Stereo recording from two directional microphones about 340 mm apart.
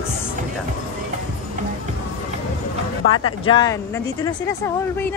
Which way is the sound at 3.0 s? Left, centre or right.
Left.